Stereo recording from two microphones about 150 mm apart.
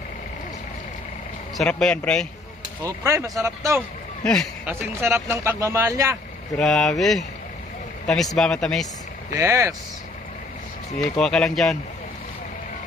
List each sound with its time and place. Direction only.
1.6 s speech: 5° left (ahead or behind)
2.8 s speech: 20° right (ahead or behind)
4.2 s a man's voice: 5° left (ahead or behind)
4.6 s speech: 15° right (ahead or behind)
6.5 s speech: 5° left (ahead or behind)
8.4 s speech: 5° left (ahead or behind)
9.4 s speech: 20° right (ahead or behind)
11.0 s speech: 5° left (ahead or behind)